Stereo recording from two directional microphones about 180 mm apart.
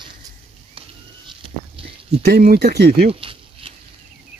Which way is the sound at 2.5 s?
65° right (ahead or behind).